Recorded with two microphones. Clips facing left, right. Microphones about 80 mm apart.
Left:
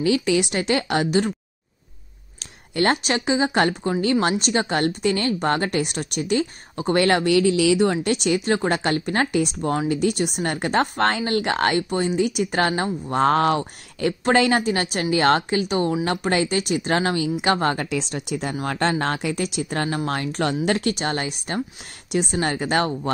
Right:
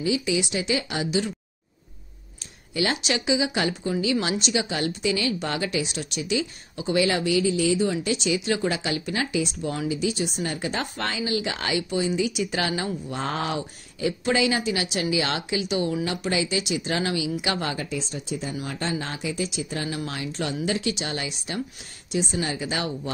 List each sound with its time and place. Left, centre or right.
0.0 s speech: left
2.7 s speech: left
17.8 s speech: left
22.1 s speech: left